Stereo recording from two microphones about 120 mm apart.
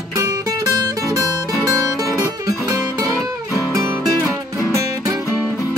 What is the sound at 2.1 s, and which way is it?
Music, 25° right (ahead or behind).